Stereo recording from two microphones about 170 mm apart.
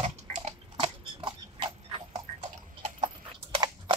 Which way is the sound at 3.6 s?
25° right (ahead or behind).